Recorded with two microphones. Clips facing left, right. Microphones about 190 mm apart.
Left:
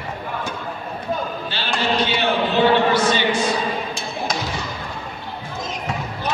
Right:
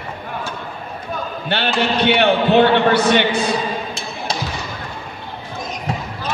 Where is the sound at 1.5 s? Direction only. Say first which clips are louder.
Right 5 dB; 65° right (ahead or behind).